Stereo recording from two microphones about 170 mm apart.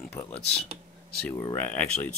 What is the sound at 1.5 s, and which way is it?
Speech, 10° left (ahead or behind).